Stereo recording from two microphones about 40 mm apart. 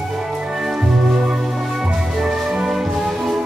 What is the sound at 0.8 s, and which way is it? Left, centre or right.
Music, centre.